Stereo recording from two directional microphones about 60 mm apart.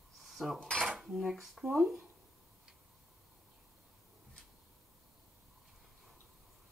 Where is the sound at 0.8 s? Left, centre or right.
Centre.